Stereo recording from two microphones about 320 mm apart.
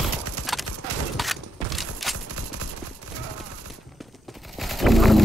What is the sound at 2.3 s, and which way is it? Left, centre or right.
Clip-clop, right.